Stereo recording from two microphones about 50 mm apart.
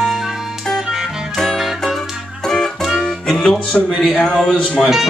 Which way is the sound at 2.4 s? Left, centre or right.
Centre.